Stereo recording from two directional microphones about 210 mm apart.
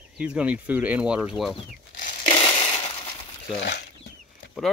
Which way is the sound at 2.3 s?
25° left (ahead or behind).